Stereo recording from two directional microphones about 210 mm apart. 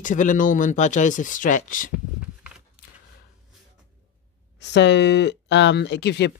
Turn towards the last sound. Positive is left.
turn(degrees=55)  # may be behind; listen again after turning